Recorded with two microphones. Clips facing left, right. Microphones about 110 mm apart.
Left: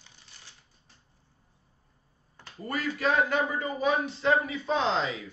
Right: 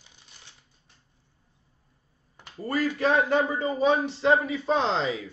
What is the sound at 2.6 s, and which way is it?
Speech, 35° right (ahead or behind).